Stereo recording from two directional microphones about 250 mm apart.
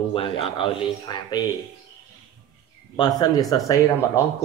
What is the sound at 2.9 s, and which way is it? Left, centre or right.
Speech, centre.